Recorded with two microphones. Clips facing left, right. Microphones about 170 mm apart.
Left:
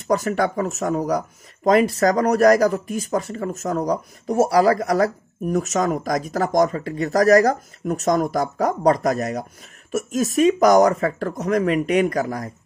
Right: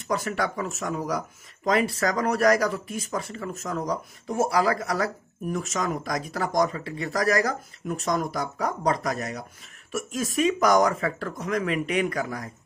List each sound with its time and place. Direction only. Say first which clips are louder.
0.1 s speech: left 7 dB; 45° left (ahead or behind)